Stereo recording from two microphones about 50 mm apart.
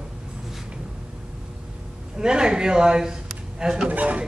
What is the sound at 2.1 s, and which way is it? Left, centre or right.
Speech, centre.